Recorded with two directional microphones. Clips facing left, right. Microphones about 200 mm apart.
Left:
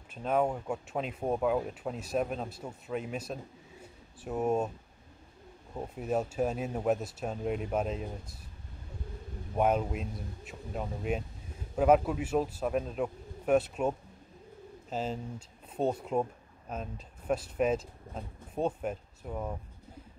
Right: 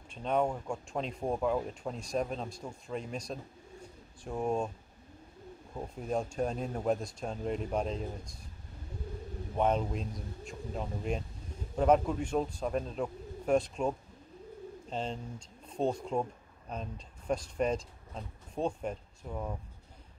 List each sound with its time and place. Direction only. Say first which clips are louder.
0.1 s speech: left 1 dB; 5° left (ahead or behind)
3.8 s pigeon: left 3 dB; 5° left (ahead or behind)
5.8 s speech: left 2 dB; 5° left (ahead or behind)
9.6 s speech: left 2 dB; 10° left (ahead or behind)